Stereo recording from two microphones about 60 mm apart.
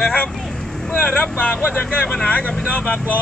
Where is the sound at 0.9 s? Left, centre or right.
Left.